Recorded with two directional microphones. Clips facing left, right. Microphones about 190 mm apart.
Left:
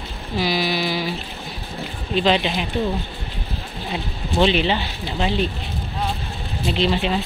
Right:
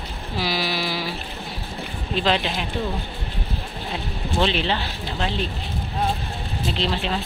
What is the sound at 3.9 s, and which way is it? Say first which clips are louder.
Speech: left 2 dB; centre (ahead or behind).